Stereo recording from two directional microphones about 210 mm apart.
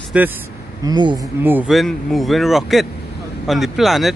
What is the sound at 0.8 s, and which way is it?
Speech, 20° right (ahead or behind).